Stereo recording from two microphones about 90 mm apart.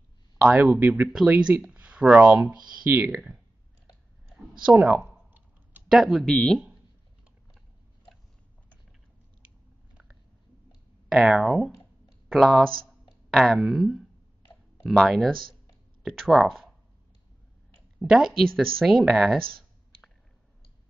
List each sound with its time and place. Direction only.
0.5 s speech: 20° right (ahead or behind)
4.6 s typing: 15° right (ahead or behind)
5.9 s speech: centre (ahead or behind)
6.2 s speech: 10° left (ahead or behind)
11.1 s speech: 5° right (ahead or behind)
17.9 s speech: 5° right (ahead or behind)